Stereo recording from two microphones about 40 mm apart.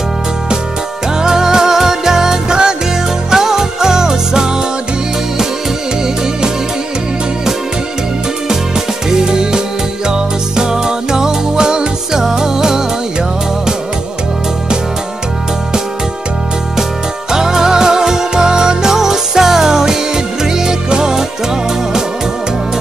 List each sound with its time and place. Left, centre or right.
1.2 s music: centre
8.5 s music: centre
17.3 s music: centre